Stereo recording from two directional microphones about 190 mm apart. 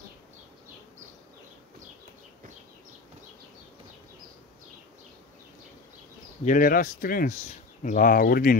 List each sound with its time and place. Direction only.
6.4 s speech: 45° left (ahead or behind)